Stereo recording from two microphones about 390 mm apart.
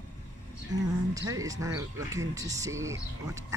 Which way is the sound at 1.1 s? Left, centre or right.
Centre.